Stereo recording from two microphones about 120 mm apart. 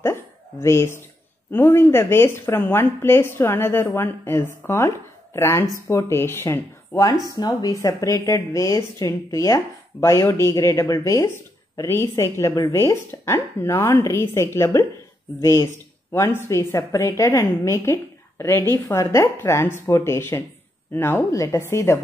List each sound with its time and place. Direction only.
0.0 s hiccup: 20° left (ahead or behind)
1.5 s a woman's voice: 20° left (ahead or behind)
7.3 s a woman's voice: 30° left (ahead or behind)
16.1 s a woman's voice: 20° left (ahead or behind)